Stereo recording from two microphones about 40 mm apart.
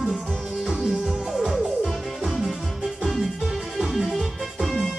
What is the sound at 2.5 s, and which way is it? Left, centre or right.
Music, centre.